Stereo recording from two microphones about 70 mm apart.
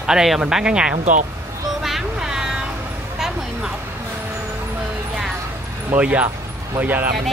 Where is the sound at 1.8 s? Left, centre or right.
Centre.